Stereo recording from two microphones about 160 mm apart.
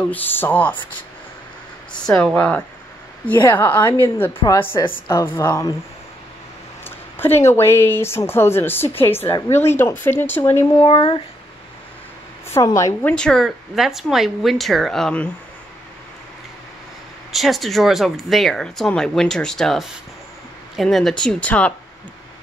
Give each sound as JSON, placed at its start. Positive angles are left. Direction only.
{"t": 0.0, "sound": "a woman's voice", "side_deg": 10}
{"t": 1.9, "sound": "a woman's voice", "side_deg": 5}
{"t": 6.8, "sound": "a woman's voice", "side_deg": 15}
{"t": 10.8, "sound": "speech", "side_deg": 35}
{"t": 12.4, "sound": "a woman's voice", "side_deg": 15}
{"t": 13.1, "sound": "speech", "side_deg": 5}
{"t": 17.3, "sound": "speech", "side_deg": 0}